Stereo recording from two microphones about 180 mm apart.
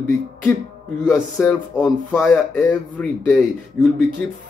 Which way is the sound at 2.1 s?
Centre (ahead or behind).